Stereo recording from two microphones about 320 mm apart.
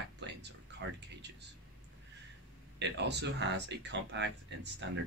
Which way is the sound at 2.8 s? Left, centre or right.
Right.